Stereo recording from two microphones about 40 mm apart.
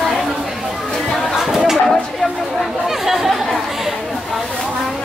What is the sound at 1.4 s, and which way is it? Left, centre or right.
Chatter, centre.